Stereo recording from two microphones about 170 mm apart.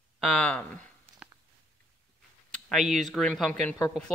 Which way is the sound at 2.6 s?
Centre (ahead or behind).